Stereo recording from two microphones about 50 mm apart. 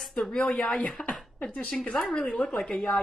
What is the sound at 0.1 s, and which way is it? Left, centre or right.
Speech, centre.